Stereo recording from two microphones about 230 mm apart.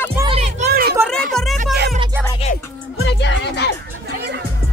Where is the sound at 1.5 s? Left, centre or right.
Right.